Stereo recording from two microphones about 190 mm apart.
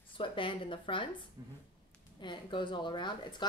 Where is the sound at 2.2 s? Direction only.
25° left (ahead or behind).